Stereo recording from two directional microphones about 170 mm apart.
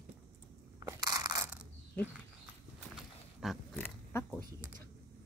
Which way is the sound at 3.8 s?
15° left (ahead or behind).